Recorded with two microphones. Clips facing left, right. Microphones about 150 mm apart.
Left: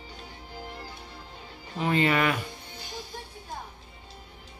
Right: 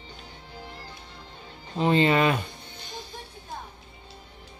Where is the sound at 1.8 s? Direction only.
25° right (ahead or behind).